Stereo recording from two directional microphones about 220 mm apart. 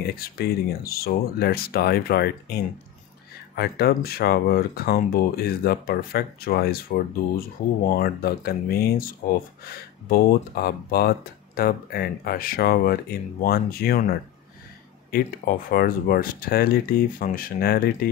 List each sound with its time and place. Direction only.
0.0 s speech: 45° left (ahead or behind)
7.9 s speech: 45° left (ahead or behind)